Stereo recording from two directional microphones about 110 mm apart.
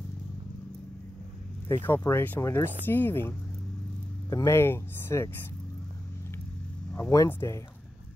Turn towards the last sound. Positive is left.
turn(degrees=20)  # may be behind; listen again after turning